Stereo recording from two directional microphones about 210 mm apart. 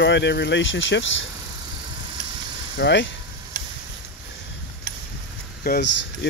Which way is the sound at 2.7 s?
55° left (ahead or behind).